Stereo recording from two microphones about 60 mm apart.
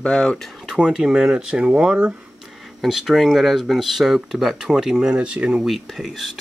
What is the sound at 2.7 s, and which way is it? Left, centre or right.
Speech, centre.